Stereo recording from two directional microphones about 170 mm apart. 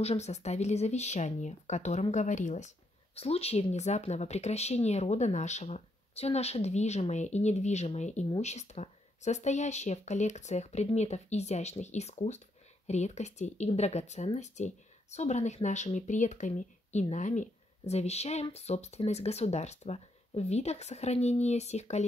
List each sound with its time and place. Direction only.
0.0 s speech: 40° left (ahead or behind)